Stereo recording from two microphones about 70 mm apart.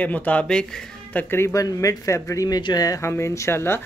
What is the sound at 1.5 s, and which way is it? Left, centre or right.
Speech, left.